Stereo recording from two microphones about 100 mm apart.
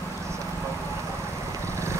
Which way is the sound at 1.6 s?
30° right (ahead or behind).